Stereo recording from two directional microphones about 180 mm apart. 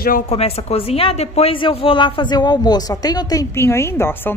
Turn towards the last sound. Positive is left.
turn(degrees=10)  # may be behind; listen again after turning